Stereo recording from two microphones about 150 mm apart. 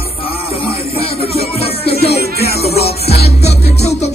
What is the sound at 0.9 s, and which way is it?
Music, 40° left (ahead or behind).